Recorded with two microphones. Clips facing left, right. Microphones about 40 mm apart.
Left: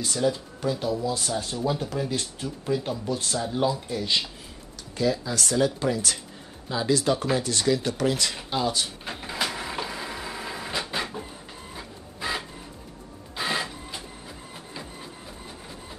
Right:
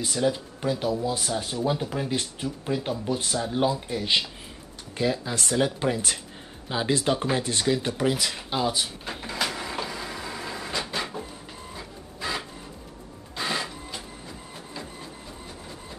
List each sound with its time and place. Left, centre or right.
0.0 s speech: centre
8.2 s speech: centre
9.0 s printer: centre
14.5 s a sound: centre